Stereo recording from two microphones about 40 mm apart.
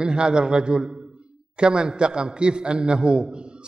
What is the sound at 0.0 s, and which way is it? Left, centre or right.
A man's voice, right.